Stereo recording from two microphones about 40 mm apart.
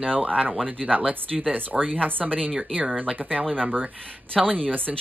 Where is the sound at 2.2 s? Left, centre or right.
Centre.